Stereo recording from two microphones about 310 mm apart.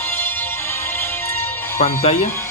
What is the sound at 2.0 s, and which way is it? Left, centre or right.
Speech, left.